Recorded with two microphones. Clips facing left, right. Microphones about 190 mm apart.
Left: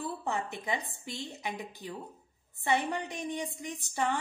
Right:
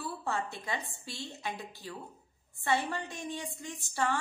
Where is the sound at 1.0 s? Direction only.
20° left (ahead or behind).